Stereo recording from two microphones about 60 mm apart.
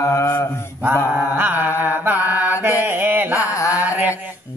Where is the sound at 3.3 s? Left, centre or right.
Left.